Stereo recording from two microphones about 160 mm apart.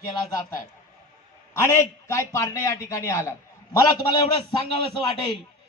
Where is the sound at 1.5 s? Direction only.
15° left (ahead or behind).